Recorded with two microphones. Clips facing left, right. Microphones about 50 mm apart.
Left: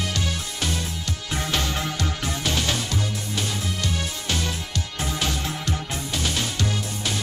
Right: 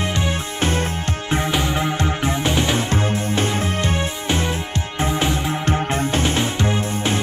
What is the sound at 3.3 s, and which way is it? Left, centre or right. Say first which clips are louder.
Music: right 8 dB; right.